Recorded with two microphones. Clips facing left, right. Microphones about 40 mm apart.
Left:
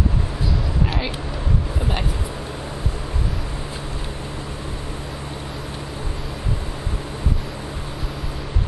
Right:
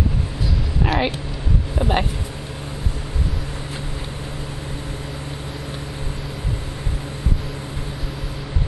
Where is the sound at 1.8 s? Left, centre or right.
Right.